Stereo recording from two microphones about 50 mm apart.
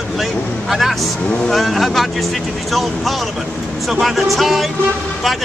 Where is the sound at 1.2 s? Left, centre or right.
Centre.